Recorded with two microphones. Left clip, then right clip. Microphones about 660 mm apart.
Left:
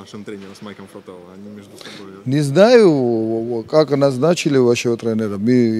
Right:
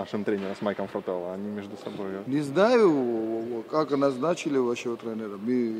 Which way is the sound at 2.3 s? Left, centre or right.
Left.